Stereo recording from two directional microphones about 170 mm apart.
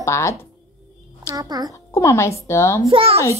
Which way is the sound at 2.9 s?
35° right (ahead or behind).